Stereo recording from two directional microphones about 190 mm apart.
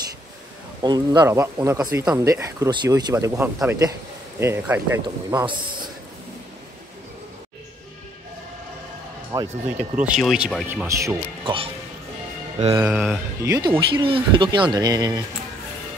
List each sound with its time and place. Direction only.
0.8 s speech: 20° right (ahead or behind)
5.4 s speech: 25° right (ahead or behind)
9.3 s speech: 15° right (ahead or behind)
9.8 s speech: 5° right (ahead or behind)
11.0 s speech: 15° right (ahead or behind)
12.8 s speech: 10° right (ahead or behind)